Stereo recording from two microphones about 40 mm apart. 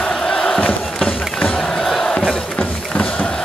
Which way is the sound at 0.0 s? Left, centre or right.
Centre.